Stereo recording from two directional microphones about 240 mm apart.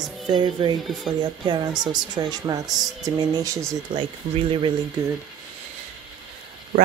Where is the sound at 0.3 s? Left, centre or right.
Centre.